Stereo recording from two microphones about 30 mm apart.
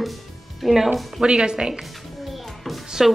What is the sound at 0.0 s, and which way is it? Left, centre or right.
Music, centre.